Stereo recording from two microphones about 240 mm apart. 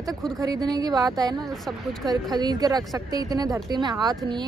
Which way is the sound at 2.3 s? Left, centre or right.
Centre.